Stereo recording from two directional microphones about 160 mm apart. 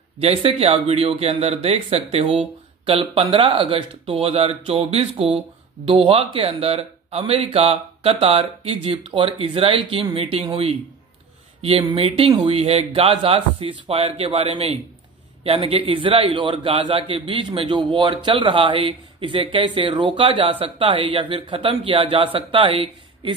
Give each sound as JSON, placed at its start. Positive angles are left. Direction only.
{"t": 0.2, "sound": "a man's voice", "side_deg": -35}